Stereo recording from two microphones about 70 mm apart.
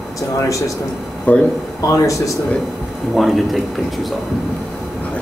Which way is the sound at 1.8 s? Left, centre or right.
Left.